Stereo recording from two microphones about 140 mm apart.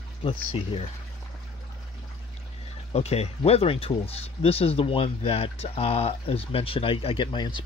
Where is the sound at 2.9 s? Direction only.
50° left (ahead or behind).